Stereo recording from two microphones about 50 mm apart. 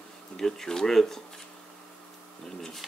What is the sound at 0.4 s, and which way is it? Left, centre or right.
Speech, centre.